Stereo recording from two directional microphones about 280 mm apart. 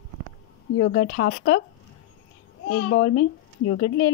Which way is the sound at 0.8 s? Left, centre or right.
Left.